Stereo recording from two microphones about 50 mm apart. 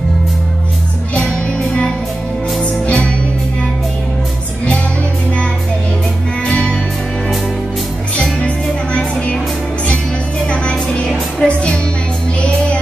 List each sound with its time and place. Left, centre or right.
1.1 s music: centre
6.4 s music: centre
8.2 s music: left
10.4 s music: left